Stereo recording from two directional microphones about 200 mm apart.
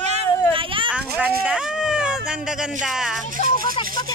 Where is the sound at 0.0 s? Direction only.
30° right (ahead or behind).